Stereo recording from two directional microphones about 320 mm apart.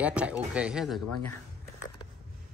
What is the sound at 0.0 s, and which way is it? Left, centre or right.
Speech, centre.